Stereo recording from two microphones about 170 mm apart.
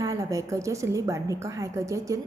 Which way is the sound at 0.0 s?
20° right (ahead or behind).